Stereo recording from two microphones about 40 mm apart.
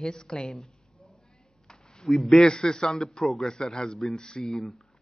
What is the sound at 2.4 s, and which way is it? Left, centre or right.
Speech, centre.